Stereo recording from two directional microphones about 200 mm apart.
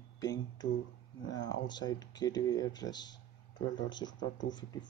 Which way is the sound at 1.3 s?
65° left (ahead or behind).